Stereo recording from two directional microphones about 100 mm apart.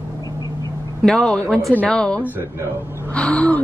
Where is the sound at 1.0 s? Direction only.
5° left (ahead or behind).